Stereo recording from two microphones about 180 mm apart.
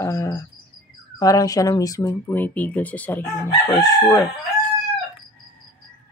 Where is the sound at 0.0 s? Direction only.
15° left (ahead or behind).